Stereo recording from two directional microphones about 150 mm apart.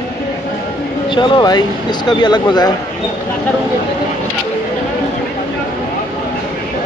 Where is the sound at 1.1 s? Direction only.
30° left (ahead or behind).